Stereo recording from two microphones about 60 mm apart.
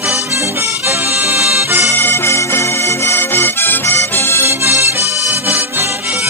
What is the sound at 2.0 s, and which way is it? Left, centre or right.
Music, left.